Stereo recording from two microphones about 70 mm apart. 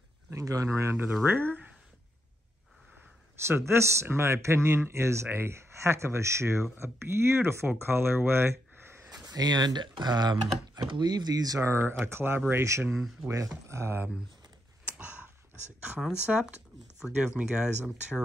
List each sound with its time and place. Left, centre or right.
0.3 s speech: right
3.4 s speech: right
9.1 s speech: right
11.6 s speech: right
12.9 s speech: centre
13.3 s speech: right
15.0 s a sound: centre
16.3 s speech: centre